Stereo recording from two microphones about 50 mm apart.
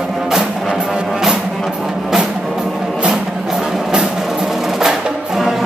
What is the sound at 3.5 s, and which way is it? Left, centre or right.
Music, centre.